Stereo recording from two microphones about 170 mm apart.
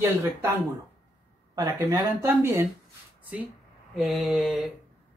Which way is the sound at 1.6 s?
20° right (ahead or behind).